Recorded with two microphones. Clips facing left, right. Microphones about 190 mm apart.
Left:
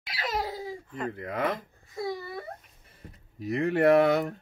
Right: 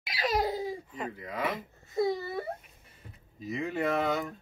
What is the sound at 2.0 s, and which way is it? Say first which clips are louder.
Speech: right 5 dB; 25° right (ahead or behind).